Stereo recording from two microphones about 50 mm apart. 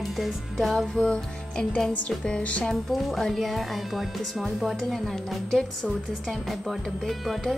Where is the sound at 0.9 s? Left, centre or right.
Centre.